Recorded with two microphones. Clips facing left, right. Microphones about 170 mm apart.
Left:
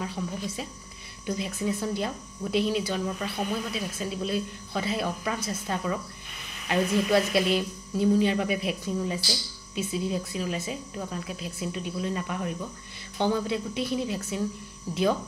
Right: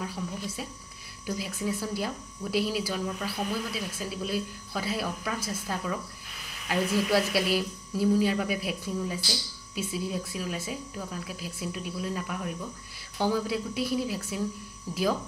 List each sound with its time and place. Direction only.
0.0 s speech: centre (ahead or behind)